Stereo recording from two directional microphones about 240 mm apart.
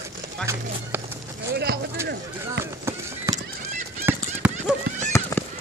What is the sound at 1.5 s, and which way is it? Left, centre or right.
Clip-clop, right.